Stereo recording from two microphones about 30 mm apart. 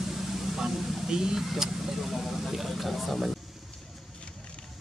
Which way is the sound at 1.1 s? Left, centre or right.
Centre.